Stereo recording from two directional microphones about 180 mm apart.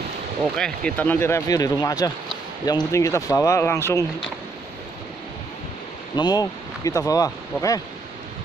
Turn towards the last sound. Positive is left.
turn(degrees=20)  # may be behind; listen again after turning